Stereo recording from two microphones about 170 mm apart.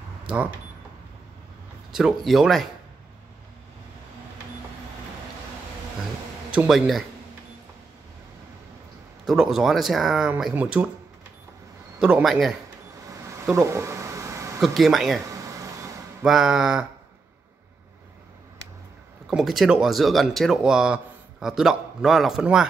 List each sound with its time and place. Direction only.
0.3 s speech: 10° right (ahead or behind)
1.9 s speech: 5° right (ahead or behind)
6.5 s speech: centre (ahead or behind)
9.2 s speech: centre (ahead or behind)
12.0 s speech: 5° right (ahead or behind)
13.3 s a sound: 15° right (ahead or behind)
14.6 s speech: centre (ahead or behind)
15.3 s air conditioning: 20° right (ahead or behind)
16.3 s speech: 5° right (ahead or behind)
19.3 s speech: centre (ahead or behind)